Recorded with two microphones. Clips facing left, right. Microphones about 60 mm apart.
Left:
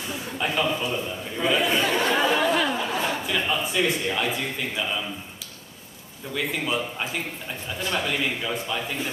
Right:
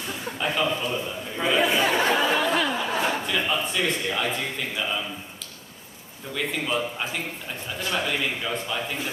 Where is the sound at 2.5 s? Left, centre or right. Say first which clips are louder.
Left 1 dB; centre.